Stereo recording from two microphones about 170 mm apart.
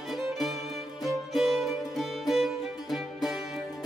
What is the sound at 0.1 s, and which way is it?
Music, centre (ahead or behind).